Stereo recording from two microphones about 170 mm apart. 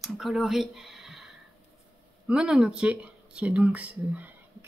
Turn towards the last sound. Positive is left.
turn(degrees=-10)  # may be behind; listen again after turning